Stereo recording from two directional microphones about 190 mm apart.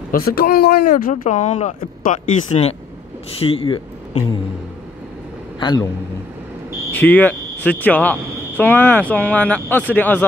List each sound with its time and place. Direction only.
0.1 s speech: 50° left (ahead or behind)
3.3 s speech: 30° left (ahead or behind)
5.6 s a man's voice: 20° left (ahead or behind)
6.9 s speech: 10° left (ahead or behind)